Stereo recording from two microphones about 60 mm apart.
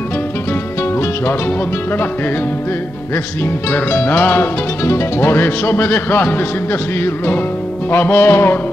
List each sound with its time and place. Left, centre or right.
3.7 s music: left
7.9 s music: left